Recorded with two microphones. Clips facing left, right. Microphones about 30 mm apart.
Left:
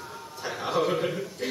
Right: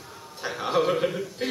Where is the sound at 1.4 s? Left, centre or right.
Right.